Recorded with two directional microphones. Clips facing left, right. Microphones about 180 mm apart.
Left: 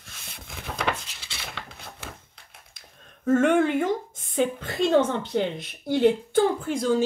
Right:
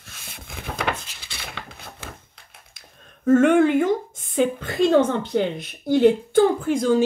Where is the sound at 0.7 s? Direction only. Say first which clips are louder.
Right 1 dB; 5° right (ahead or behind).